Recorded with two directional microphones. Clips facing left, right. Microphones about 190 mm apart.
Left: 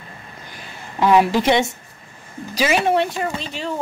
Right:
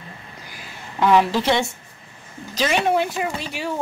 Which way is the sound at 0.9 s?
10° left (ahead or behind).